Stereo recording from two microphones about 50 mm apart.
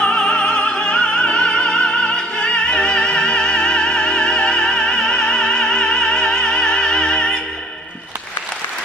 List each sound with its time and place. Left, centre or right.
0.0 s music: centre